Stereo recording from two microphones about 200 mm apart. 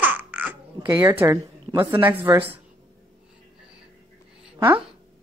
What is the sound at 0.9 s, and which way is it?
A woman's voice, 20° right (ahead or behind).